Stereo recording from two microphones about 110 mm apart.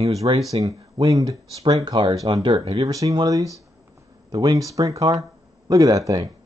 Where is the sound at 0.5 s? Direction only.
30° right (ahead or behind); by 2.6 s 50° right (ahead or behind).